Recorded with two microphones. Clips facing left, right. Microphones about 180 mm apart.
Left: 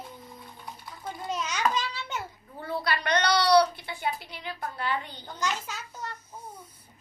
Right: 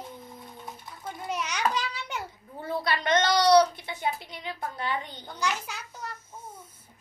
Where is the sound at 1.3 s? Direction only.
10° right (ahead or behind).